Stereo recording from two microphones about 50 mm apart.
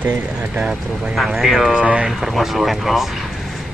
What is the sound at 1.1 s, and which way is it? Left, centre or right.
Speech, centre.